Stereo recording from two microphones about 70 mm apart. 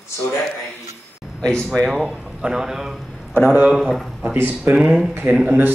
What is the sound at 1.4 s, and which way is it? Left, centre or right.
Speech, centre.